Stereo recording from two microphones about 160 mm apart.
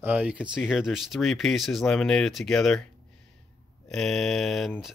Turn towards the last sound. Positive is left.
turn(degrees=0)  # may be behind; listen again after turning